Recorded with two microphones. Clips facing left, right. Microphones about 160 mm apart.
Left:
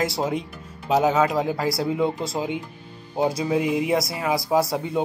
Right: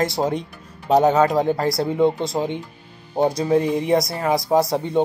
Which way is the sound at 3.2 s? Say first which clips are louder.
Right 4 dB; 5° left (ahead or behind).